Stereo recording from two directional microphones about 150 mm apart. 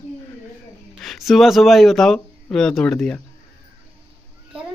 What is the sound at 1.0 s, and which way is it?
Speech, centre (ahead or behind).